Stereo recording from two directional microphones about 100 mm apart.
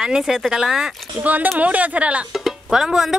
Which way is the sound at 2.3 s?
5° right (ahead or behind).